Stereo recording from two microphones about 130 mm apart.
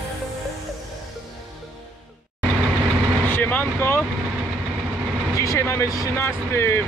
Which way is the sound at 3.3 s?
15° left (ahead or behind).